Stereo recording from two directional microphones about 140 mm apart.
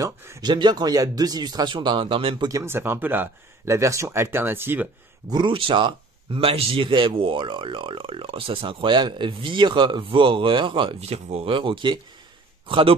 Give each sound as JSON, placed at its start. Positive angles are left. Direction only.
{"t": 0.0, "sound": "speech", "side_deg": -25}
{"t": 2.4, "sound": "speech", "side_deg": -20}
{"t": 5.3, "sound": "a man's voice", "side_deg": -35}